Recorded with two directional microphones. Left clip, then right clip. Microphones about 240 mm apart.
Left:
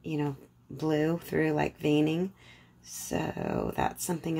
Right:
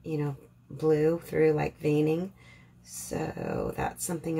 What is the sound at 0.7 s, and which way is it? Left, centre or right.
Speech, left.